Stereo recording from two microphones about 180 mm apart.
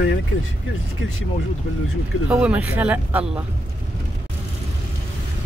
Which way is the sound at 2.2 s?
10° right (ahead or behind).